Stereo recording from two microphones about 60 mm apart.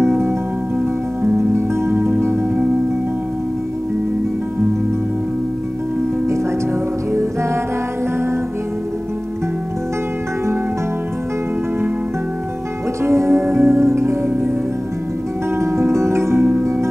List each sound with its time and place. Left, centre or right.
0.0 s music: right
1.5 s music: right
13.0 s music: right
15.6 s music: right